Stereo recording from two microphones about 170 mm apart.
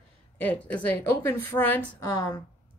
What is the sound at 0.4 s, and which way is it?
A woman's voice, 10° left (ahead or behind).